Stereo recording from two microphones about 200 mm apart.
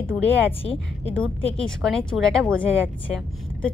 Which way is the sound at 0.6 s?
30° left (ahead or behind).